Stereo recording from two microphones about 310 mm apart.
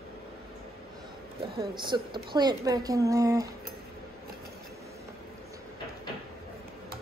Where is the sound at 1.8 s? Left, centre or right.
Centre.